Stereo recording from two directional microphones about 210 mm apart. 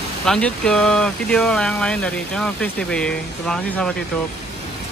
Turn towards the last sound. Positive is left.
turn(degrees=5)  # may be behind; listen again after turning